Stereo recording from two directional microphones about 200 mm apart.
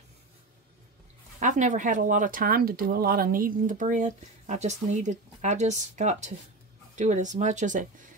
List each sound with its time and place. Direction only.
1.4 s speech: 40° right (ahead or behind)